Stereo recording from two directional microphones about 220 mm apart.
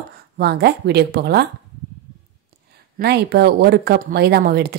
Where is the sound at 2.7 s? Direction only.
45° right (ahead or behind).